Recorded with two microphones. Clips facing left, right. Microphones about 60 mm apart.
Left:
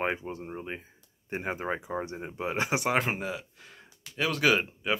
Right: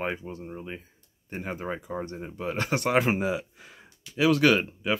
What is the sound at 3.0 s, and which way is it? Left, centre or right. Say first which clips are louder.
Speech: right 6 dB; centre.